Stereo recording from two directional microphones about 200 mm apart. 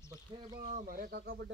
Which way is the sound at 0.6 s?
40° right (ahead or behind).